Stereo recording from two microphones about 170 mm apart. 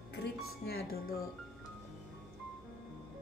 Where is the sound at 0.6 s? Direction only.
60° left (ahead or behind).